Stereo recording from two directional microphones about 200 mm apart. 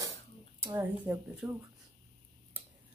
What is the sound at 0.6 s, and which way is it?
Speech, 10° right (ahead or behind).